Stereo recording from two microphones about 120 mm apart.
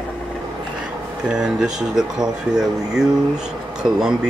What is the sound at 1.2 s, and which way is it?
Speech, 5° right (ahead or behind).